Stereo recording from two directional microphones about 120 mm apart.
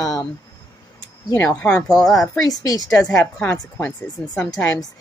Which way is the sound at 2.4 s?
30° left (ahead or behind).